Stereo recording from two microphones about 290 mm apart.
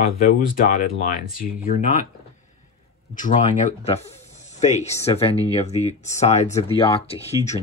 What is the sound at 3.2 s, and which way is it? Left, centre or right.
Speech, left.